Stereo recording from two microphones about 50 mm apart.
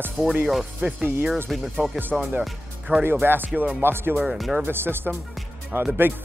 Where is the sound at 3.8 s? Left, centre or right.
Right.